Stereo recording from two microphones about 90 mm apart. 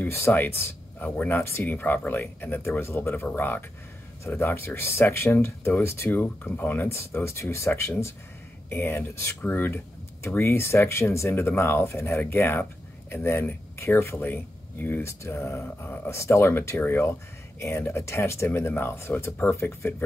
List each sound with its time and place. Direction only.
0.0 s speech: 25° left (ahead or behind)